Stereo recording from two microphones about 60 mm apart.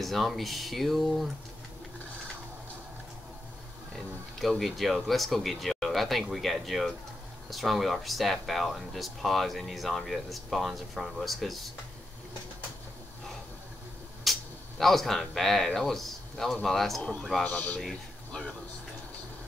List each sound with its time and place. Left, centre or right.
0.0 s speech: centre
3.9 s speech: centre
14.2 s speech: centre
17.4 s a man's voice: left
17.7 s a man's voice: centre